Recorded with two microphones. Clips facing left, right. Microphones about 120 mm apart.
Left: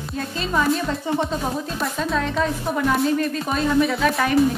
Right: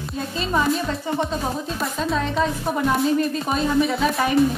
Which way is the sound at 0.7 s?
Centre (ahead or behind).